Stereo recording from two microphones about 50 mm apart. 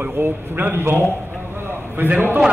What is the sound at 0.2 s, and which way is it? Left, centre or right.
Speech, right.